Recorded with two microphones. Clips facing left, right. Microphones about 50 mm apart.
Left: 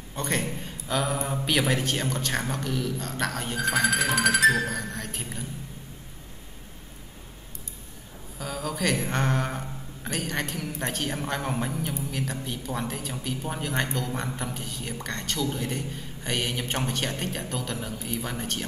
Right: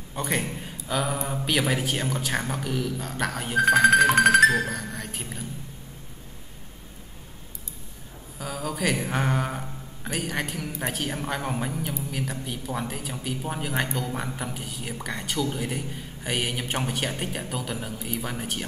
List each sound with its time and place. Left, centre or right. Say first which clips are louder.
0.1 s a man's voice: right 1 dB; centre
3.8 s music: right 6 dB; right
4.6 s a man's voice: even; centre
8.4 s a man's voice: right 1 dB; centre